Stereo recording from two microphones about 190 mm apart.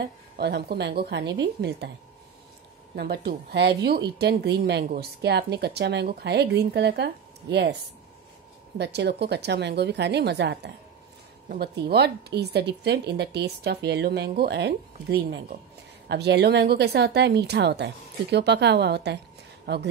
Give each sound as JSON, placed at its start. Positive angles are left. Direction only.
{"t": 0.4, "sound": "speech", "side_deg": -60}
{"t": 3.0, "sound": "speech", "side_deg": -55}
{"t": 8.7, "sound": "speech", "side_deg": -60}